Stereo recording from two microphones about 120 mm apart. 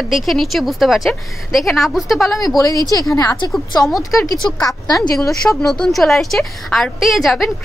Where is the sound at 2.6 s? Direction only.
30° left (ahead or behind).